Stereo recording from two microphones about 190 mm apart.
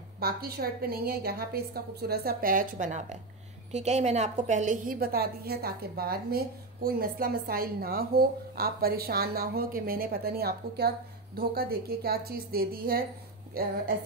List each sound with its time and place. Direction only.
0.2 s a woman's voice: 50° right (ahead or behind)